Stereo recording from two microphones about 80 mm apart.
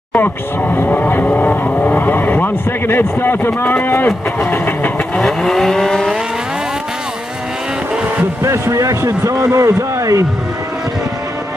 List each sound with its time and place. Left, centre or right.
0.1 s speech: left
5.1 s vehicle: centre
8.4 s speech: right